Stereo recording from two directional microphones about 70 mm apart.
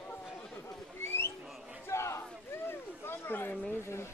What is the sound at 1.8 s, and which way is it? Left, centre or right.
Battle cry, left.